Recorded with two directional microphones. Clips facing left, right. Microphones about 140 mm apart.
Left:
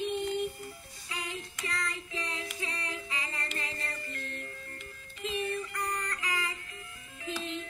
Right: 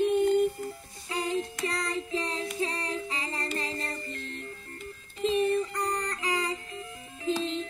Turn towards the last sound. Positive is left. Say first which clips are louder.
# right 8 dB
turn(degrees=-30)  # may be behind; listen again after turning